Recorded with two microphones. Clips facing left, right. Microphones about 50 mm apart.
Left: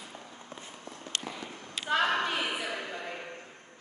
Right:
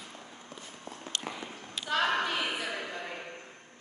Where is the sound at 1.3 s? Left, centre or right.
Right.